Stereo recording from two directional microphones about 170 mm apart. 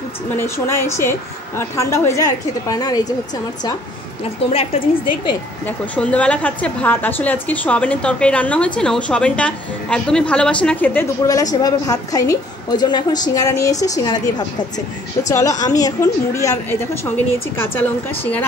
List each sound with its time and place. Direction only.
0.4 s a woman's voice: 15° left (ahead or behind)
4.5 s a woman's voice: 35° left (ahead or behind)
5.7 s a woman's voice: 5° left (ahead or behind)
15.2 s a woman's voice: 20° left (ahead or behind)